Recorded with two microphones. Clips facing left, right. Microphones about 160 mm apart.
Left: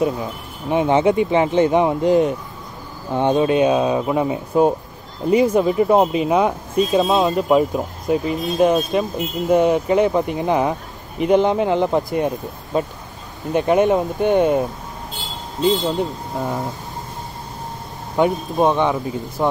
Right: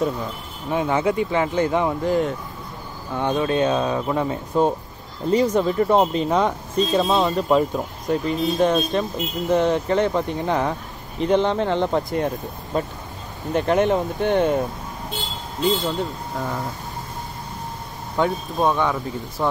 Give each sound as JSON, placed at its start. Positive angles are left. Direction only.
{"t": 0.7, "sound": "speech", "side_deg": 20}
{"t": 18.1, "sound": "speech", "side_deg": 20}